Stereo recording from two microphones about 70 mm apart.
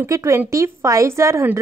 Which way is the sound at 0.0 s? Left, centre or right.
Right.